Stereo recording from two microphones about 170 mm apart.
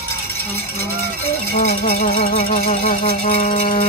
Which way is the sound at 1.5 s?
40° left (ahead or behind).